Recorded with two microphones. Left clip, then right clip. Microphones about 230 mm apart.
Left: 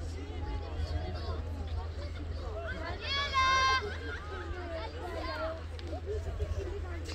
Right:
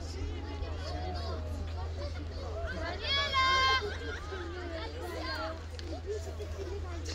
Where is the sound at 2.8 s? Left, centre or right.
Right.